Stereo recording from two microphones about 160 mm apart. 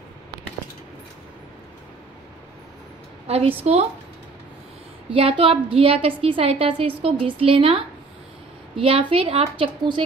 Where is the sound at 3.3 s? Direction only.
40° right (ahead or behind).